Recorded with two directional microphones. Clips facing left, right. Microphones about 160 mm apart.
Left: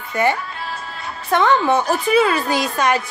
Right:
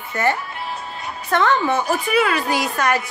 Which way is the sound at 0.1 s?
15° left (ahead or behind).